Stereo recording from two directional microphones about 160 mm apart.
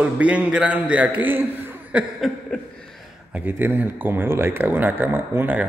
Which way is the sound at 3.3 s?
10° right (ahead or behind).